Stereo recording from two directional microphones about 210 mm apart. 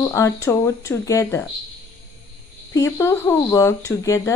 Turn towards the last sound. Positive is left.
turn(degrees=15)  # may be behind; listen again after turning